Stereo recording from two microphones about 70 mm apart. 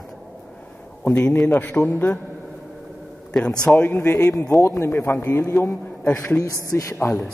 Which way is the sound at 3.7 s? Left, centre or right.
Left.